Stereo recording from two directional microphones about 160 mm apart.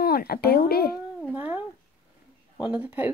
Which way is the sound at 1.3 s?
10° right (ahead or behind).